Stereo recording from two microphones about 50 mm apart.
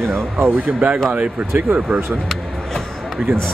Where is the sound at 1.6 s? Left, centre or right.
Right.